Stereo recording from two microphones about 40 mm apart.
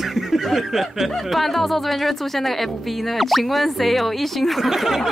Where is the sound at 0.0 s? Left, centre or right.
Centre.